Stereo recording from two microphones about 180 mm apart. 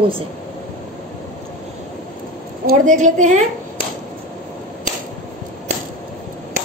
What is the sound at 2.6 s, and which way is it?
Speech, 45° right (ahead or behind).